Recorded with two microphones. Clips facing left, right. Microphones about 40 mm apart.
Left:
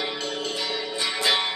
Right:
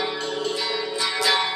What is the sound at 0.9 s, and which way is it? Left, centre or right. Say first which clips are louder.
Music: right 1 dB; left.